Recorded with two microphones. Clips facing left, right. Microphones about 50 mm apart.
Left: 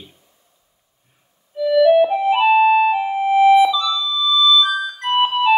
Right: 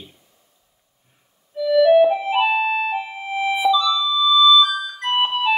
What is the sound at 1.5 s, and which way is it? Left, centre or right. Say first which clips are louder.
Keyboard: left 1 dB; left.